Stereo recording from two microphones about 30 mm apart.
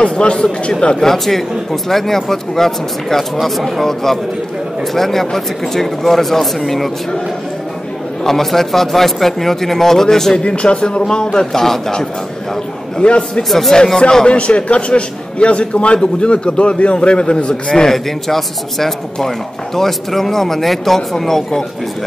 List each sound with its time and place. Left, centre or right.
0.0 s a man's voice: left
1.0 s speech: centre
8.2 s speech: centre
10.4 s speech: left
11.5 s speech: centre
13.0 s a man's voice: left
13.5 s speech: centre
14.2 s a man's voice: left
17.9 s speech: centre